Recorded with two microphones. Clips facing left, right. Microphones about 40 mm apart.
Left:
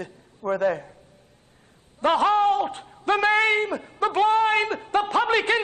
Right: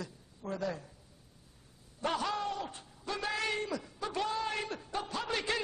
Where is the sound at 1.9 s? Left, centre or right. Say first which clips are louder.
Left 14 dB; left.